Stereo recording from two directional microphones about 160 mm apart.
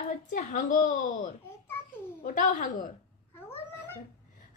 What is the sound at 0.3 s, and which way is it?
A woman's voice, 50° left (ahead or behind).